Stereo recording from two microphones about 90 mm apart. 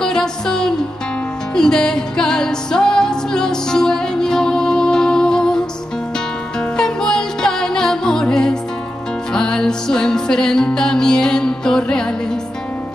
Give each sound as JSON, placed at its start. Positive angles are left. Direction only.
{"t": 0.0, "sound": "music", "side_deg": 5}
{"t": 6.8, "sound": "music", "side_deg": 5}